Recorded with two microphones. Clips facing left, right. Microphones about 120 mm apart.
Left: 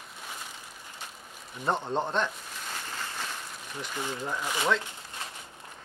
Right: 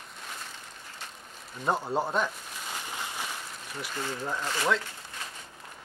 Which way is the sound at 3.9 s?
15° left (ahead or behind).